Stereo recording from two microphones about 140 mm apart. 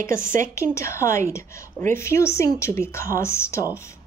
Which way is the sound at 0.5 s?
20° left (ahead or behind).